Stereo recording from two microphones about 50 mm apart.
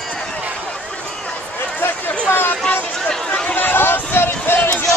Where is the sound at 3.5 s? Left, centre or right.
Left.